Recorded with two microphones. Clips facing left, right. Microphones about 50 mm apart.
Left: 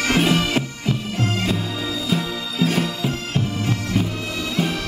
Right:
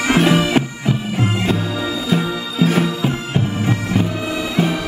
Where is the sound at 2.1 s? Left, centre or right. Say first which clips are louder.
Right 4 dB; centre.